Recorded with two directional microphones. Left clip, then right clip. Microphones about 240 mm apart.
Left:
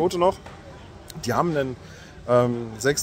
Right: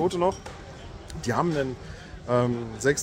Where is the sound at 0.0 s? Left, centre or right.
Left.